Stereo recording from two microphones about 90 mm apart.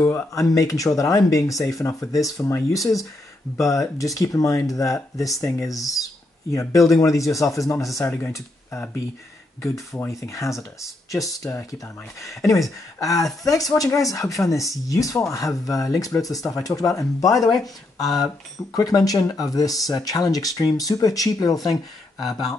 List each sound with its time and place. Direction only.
0.0 s speech: 25° left (ahead or behind)
0.3 s speech: 35° left (ahead or behind)
8.0 s speech: 25° left (ahead or behind)
9.6 s speech: 30° left (ahead or behind)
18.8 s speech: 45° left (ahead or behind)